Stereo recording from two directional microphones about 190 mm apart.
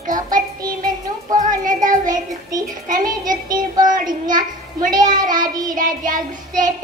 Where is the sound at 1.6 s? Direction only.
45° right (ahead or behind).